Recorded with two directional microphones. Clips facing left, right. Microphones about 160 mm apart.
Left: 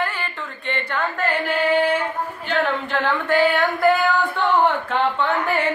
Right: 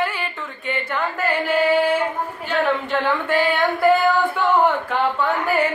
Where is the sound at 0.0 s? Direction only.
10° right (ahead or behind).